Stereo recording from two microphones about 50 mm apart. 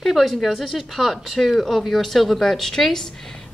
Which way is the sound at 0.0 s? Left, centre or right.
Centre.